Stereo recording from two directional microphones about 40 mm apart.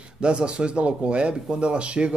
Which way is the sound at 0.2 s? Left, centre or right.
Right.